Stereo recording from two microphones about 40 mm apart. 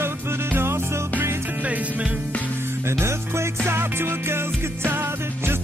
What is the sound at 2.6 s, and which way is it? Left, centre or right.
Music, right.